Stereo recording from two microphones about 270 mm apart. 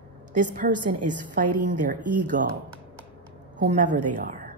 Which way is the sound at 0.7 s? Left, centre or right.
Right.